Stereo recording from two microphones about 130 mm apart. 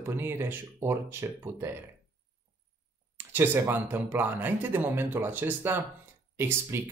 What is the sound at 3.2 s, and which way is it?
Speech, 15° right (ahead or behind).